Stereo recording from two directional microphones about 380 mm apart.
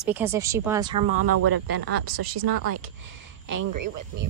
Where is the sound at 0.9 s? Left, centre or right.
Right.